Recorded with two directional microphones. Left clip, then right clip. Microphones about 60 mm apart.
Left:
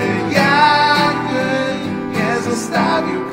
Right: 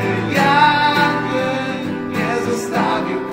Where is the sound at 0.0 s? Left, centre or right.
Centre.